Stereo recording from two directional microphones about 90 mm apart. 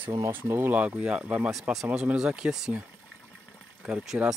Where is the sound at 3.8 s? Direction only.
10° right (ahead or behind).